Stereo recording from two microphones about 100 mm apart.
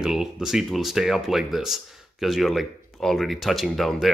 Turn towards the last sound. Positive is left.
turn(degrees=0)  # may be behind; listen again after turning